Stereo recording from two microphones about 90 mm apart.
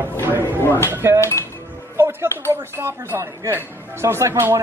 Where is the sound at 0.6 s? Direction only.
25° left (ahead or behind).